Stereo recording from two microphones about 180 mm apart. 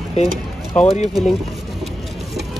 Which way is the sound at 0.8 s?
40° left (ahead or behind).